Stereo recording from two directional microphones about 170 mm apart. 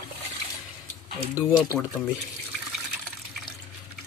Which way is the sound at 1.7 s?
5° left (ahead or behind).